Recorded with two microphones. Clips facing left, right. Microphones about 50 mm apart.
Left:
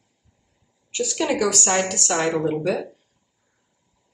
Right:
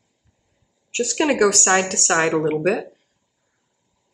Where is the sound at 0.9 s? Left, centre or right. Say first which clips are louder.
Right 3 dB; right.